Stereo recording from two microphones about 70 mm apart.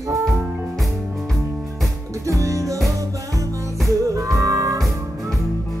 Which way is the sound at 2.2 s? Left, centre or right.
Right.